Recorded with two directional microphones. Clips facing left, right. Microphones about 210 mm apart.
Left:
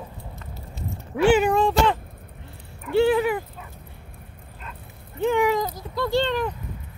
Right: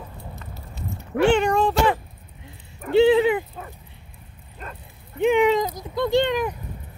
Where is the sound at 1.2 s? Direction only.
5° left (ahead or behind).